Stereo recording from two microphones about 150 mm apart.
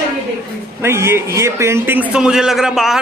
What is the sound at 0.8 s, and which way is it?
A man's voice, 15° right (ahead or behind).